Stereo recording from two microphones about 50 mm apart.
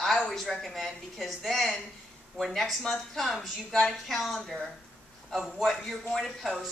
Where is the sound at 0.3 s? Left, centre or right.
Centre.